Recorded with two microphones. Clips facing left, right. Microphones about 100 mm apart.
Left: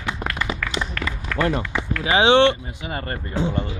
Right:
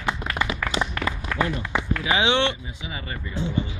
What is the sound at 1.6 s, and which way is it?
Speech, 20° right (ahead or behind).